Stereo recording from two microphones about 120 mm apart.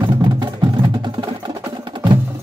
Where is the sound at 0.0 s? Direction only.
45° right (ahead or behind).